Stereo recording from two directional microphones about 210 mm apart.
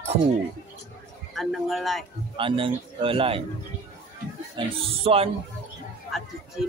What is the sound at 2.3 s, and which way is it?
Speech, 25° right (ahead or behind).